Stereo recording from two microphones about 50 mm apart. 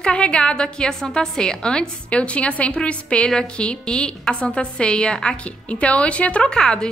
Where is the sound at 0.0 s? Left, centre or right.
Left.